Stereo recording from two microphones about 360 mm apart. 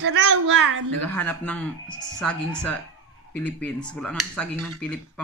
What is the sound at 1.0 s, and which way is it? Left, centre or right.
Speech, centre.